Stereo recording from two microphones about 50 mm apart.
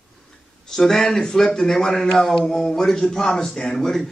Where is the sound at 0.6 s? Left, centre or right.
Centre.